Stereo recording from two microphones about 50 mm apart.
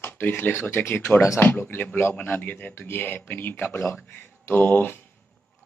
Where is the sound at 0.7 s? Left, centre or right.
Left.